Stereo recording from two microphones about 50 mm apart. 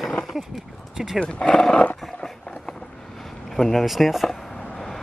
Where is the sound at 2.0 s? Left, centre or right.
Centre.